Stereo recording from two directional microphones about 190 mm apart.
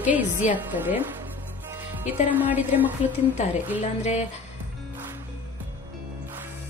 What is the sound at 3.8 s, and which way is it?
Speech, 35° left (ahead or behind).